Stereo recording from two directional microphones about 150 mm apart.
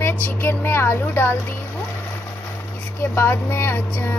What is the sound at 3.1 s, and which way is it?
Speech, 15° left (ahead or behind).